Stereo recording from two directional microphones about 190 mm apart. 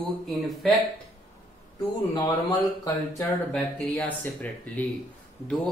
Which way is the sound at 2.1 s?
25° left (ahead or behind).